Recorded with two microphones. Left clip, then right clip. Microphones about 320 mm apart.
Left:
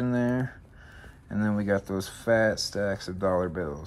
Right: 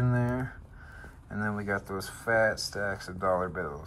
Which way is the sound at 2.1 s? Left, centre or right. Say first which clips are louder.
Left 2 dB; centre.